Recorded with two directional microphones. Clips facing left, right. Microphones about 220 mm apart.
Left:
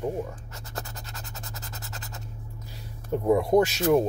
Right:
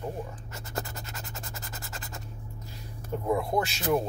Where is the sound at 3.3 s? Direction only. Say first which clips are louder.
Left 7 dB; 40° left (ahead or behind).